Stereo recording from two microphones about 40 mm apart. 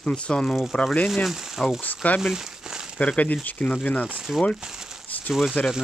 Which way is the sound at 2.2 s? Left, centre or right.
Centre.